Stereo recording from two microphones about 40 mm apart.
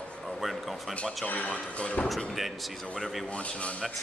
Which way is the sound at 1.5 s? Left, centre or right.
Left.